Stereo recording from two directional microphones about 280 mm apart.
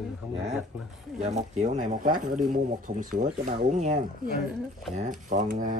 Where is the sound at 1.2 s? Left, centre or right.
Right.